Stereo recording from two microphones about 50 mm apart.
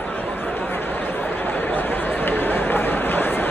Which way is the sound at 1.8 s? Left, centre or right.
Left.